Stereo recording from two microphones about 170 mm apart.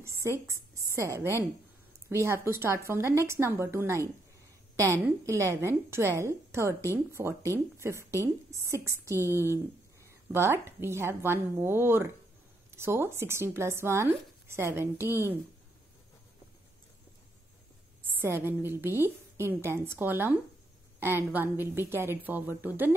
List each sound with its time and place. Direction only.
0.0 s a woman's voice: 15° right (ahead or behind)
18.1 s speech: 15° right (ahead or behind)